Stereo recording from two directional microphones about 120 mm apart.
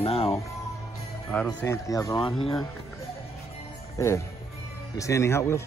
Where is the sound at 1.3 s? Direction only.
10° left (ahead or behind).